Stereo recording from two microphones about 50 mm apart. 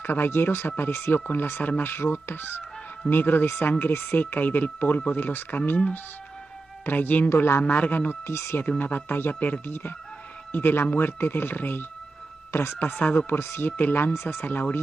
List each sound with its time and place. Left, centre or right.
0.0 s speech: left
6.9 s speech: left
7.2 s speech: left
7.6 s speech: left
8.3 s speech: left
8.5 s speech: left
13.3 s speech: left
14.1 s speech: left
14.4 s speech: left